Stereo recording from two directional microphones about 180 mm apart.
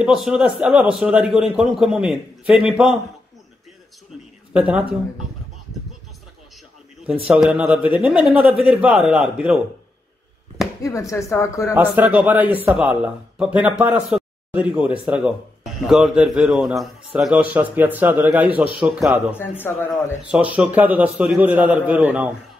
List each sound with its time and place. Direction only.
0.0 s a man's voice: 5° right (ahead or behind)
4.6 s a man's voice: 5° right (ahead or behind)
7.2 s a man's voice: 5° right (ahead or behind)
10.8 s a woman's voice: 15° left (ahead or behind)
11.7 s a man's voice: 10° right (ahead or behind)
19.3 s a woman's voice: 10° left (ahead or behind)
19.9 s a man's voice: 5° right (ahead or behind)